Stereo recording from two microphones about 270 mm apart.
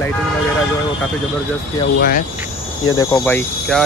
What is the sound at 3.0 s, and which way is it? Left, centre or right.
Speech, centre.